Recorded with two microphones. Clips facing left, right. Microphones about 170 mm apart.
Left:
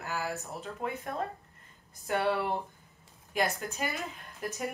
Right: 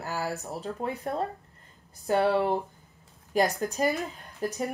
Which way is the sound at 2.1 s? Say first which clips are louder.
Right 6 dB; 30° right (ahead or behind).